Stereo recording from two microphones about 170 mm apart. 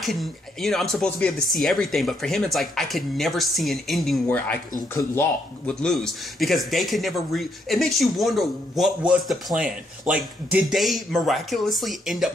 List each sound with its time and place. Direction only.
0.0 s speech: centre (ahead or behind)
4.7 s speech: 20° left (ahead or behind)
5.7 s speech: 5° left (ahead or behind)